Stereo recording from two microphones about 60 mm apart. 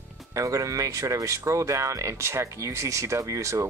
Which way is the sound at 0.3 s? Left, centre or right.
Right.